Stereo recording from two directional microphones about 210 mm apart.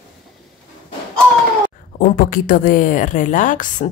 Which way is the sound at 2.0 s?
40° left (ahead or behind).